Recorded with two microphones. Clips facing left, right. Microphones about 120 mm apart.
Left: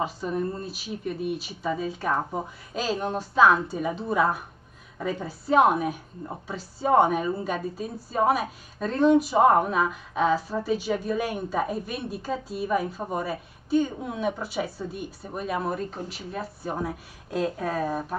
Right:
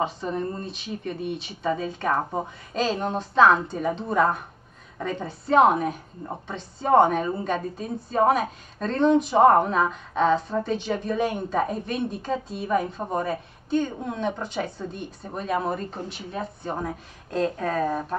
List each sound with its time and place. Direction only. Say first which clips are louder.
0.0 s a woman's voice: right 1 dB; 5° left (ahead or behind)